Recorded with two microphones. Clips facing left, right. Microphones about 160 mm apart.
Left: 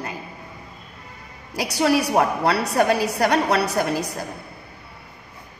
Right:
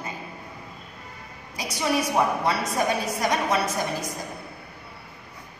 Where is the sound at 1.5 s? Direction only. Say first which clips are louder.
Left 6 dB; 75° left (ahead or behind).